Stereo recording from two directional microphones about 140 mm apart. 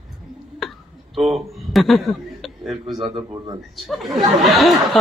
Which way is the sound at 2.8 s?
30° right (ahead or behind).